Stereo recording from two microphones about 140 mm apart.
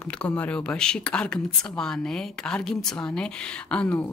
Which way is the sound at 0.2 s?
10° left (ahead or behind).